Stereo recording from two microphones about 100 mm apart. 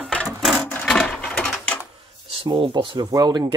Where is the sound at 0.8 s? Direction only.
5° left (ahead or behind).